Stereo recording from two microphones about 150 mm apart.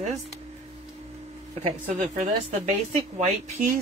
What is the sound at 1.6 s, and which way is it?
Speech, 50° right (ahead or behind).